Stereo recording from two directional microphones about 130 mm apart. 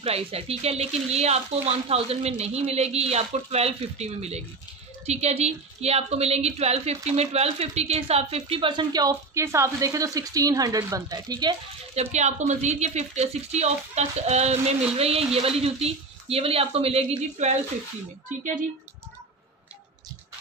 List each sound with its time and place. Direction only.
0.0 s a woman's voice: 50° right (ahead or behind); by 11.5 s 30° right (ahead or behind)
11.9 s speech: 60° right (ahead or behind)